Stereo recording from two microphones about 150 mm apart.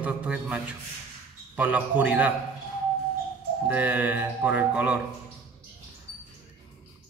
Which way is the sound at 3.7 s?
10° right (ahead or behind).